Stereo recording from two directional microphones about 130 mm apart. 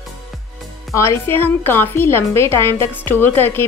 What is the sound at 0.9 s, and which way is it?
A woman's voice, 20° left (ahead or behind).